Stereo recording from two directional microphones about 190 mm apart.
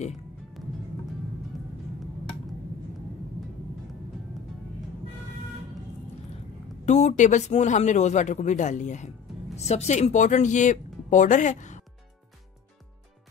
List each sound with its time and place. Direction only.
0.6 s music: centre (ahead or behind)
6.9 s a man's voice: 40° left (ahead or behind)